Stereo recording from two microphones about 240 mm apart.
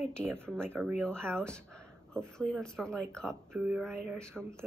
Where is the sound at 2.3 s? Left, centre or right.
Centre.